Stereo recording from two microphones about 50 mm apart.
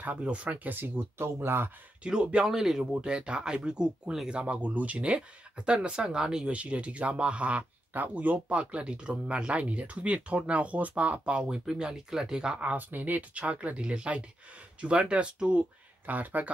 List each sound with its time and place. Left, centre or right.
0.2 s speech: right
0.7 s speech: right
1.1 s speech: right
2.0 s speech: centre
2.8 s speech: centre
12.7 s speech: right
16.1 s speech: right